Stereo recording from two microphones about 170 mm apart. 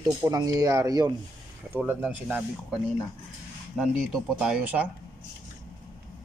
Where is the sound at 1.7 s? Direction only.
10° right (ahead or behind).